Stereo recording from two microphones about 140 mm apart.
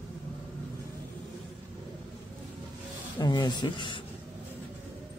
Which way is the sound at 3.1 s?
30° left (ahead or behind).